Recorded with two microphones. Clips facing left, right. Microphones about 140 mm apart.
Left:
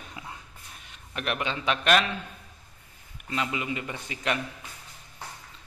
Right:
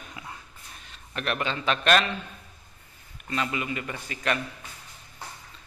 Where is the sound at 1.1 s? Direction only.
10° left (ahead or behind).